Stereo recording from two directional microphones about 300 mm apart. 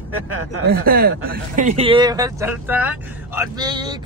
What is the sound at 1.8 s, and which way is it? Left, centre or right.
Speech, centre.